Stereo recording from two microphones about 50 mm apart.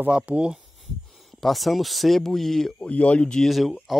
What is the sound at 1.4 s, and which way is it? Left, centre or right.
Speech, centre.